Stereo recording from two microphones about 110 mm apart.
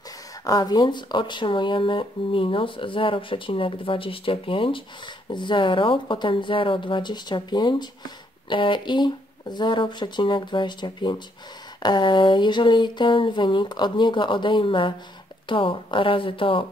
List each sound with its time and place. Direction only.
0.4 s speech: 35° left (ahead or behind); by 16.6 s 50° left (ahead or behind)